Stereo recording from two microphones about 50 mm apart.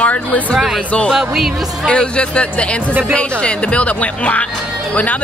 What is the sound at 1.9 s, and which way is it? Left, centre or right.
Speech, left.